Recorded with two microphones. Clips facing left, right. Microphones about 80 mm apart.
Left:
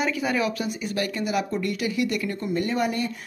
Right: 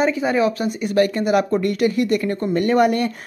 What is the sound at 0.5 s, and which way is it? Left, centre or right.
Speech, right.